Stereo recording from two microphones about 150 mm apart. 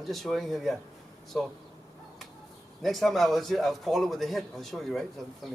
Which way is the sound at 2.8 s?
Centre (ahead or behind).